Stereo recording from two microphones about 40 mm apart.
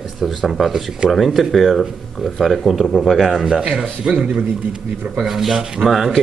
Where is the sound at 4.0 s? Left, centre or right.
Right.